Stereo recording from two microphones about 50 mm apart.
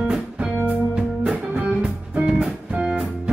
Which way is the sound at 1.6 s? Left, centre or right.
Right.